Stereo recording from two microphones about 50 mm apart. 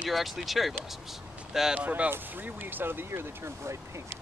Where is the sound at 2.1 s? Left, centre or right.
Right.